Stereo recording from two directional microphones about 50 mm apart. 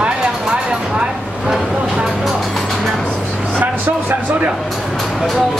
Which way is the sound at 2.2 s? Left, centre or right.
Centre.